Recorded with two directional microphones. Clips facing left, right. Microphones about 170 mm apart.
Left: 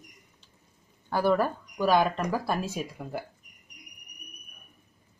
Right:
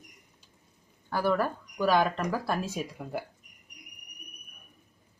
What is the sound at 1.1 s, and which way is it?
Speech, 25° left (ahead or behind).